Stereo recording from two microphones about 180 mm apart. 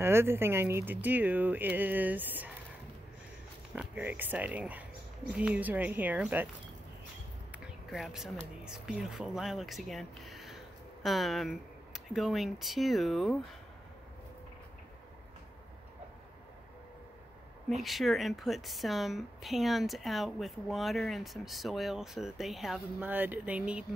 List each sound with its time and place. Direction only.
0.0 s speech: 15° right (ahead or behind)
3.7 s speech: 10° right (ahead or behind)
7.5 s a sound: 5° right (ahead or behind)
8.6 s speech: 5° right (ahead or behind)
17.8 s a woman's voice: centre (ahead or behind)